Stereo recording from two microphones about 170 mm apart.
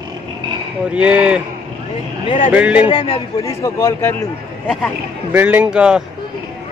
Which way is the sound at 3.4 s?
15° left (ahead or behind).